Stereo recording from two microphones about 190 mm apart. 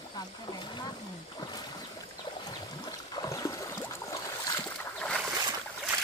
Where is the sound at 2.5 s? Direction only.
20° left (ahead or behind).